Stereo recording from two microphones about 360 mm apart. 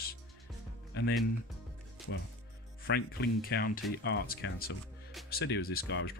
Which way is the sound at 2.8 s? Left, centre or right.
Left.